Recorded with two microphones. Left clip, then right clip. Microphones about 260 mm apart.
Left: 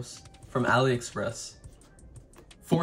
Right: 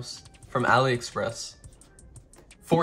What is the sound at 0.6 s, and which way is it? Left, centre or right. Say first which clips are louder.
Speech: right 3 dB; centre.